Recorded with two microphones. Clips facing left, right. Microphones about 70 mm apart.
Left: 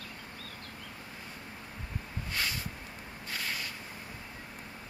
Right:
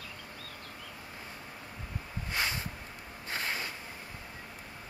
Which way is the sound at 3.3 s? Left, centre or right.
Right.